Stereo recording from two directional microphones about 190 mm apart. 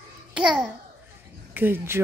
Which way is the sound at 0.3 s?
5° right (ahead or behind).